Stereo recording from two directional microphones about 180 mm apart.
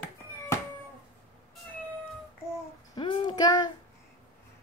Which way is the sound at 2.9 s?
30° left (ahead or behind).